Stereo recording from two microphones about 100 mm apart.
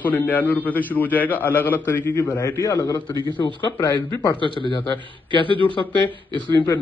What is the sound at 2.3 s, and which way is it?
A man's voice, 35° left (ahead or behind).